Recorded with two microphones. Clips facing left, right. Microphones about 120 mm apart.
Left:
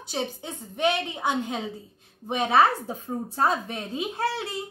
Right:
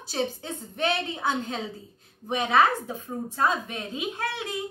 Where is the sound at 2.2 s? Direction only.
25° left (ahead or behind).